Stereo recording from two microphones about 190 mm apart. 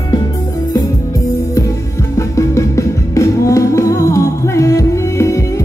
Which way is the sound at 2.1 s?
15° left (ahead or behind).